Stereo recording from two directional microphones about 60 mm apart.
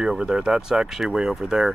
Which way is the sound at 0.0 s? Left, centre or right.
Centre.